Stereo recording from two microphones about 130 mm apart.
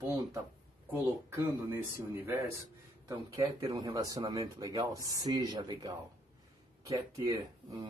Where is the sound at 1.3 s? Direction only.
20° right (ahead or behind).